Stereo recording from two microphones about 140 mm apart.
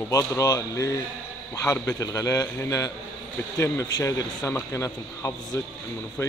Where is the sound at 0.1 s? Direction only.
20° left (ahead or behind).